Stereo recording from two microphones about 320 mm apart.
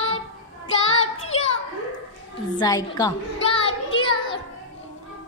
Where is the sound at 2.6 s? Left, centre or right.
Centre.